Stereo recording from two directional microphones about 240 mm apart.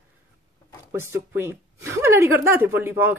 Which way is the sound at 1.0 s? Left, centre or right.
Centre.